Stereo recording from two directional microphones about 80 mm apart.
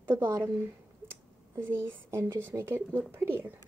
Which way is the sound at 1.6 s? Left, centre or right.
Right.